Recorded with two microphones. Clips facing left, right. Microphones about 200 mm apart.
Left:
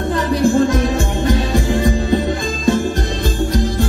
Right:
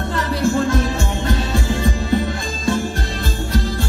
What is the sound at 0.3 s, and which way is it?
Music, 15° left (ahead or behind).